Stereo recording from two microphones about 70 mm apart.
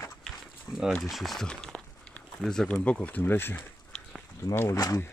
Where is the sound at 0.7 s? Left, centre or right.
Left.